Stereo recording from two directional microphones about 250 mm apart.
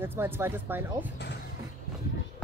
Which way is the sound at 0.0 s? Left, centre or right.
Centre.